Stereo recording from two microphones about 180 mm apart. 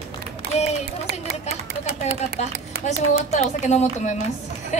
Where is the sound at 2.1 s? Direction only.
40° left (ahead or behind).